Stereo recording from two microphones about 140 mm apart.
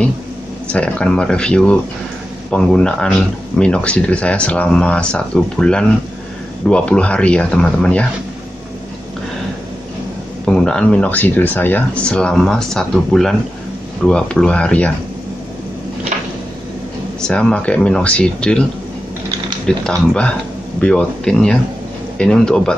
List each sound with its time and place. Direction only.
0.7 s speech: 10° left (ahead or behind)
10.4 s speech: 5° left (ahead or behind)
17.2 s speech: 5° left (ahead or behind)
19.8 s speech: 5° left (ahead or behind)